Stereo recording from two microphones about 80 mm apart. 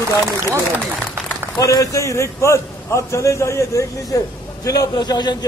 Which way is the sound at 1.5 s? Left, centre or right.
Left.